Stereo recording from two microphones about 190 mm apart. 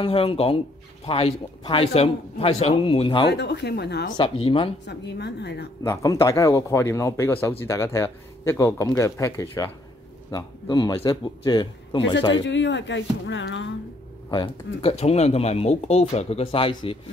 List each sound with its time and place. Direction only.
0.0 s a man's voice: 30° left (ahead or behind)
3.3 s a woman's voice: 65° left (ahead or behind)
4.2 s a man's voice: 30° left (ahead or behind)
4.8 s a woman's voice: 60° left (ahead or behind)
5.9 s a man's voice: 15° left (ahead or behind)
12.4 s speech: 75° left (ahead or behind)
14.3 s speech: 25° left (ahead or behind)